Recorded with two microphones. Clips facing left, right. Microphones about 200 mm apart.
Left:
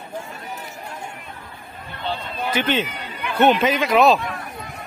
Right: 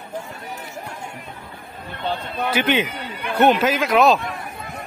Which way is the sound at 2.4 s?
10° right (ahead or behind).